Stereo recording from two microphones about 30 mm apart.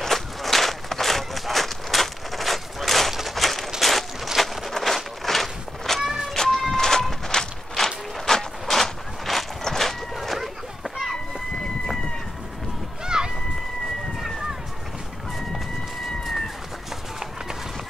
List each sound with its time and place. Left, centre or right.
0.0 s walk: centre
3.2 s a sound: centre
4.4 s walk: centre
9.6 s a sound: centre
11.5 s run: centre
13.0 s run: right